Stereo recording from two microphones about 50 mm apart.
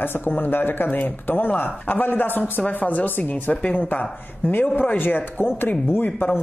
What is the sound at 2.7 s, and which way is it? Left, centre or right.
Speech, left.